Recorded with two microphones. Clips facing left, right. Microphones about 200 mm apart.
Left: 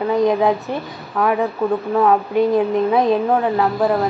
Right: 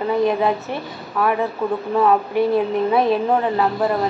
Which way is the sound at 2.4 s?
15° left (ahead or behind).